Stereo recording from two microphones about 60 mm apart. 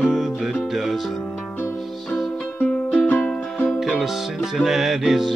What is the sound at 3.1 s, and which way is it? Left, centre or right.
Music, left.